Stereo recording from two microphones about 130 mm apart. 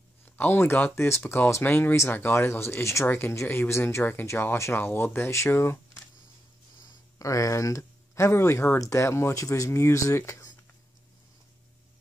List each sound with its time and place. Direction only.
0.2 s speech: 15° left (ahead or behind)